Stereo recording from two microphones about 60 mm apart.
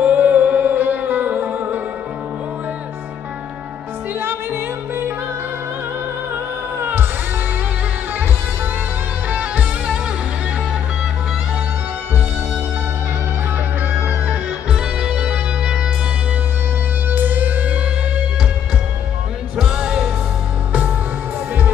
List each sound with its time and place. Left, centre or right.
0.0 s music: right
4.2 s music: right
6.8 s music: right
9.3 s music: right
14.2 s music: centre
17.1 s music: right
19.5 s music: centre